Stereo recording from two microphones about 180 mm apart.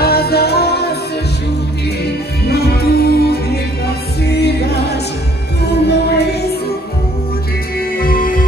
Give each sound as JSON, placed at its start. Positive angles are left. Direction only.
{"t": 0.0, "sound": "music", "side_deg": 60}
{"t": 2.4, "sound": "music", "side_deg": 60}
{"t": 8.0, "sound": "music", "side_deg": 50}